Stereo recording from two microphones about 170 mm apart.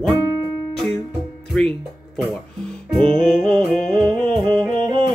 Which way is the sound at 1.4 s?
5° left (ahead or behind).